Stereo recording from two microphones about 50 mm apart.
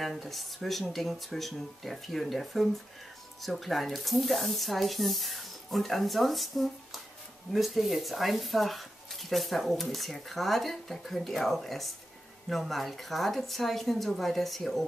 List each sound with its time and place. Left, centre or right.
0.0 s speech: centre